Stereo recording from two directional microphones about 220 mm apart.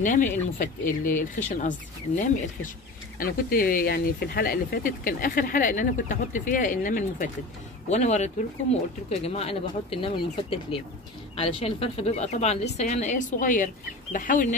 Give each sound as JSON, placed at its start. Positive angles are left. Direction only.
{"t": 0.0, "sound": "speech", "side_deg": 35}